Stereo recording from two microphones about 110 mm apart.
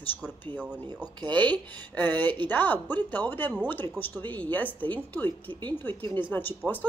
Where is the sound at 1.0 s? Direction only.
45° right (ahead or behind).